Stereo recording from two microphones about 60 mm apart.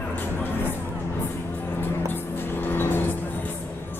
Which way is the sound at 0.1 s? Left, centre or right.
Left.